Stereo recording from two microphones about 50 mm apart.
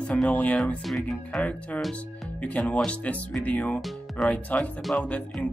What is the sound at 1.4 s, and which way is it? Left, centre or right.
Speech, left.